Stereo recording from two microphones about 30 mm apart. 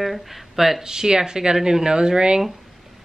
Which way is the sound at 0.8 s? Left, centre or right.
Right.